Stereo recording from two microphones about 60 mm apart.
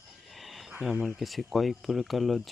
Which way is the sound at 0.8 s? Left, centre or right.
Centre.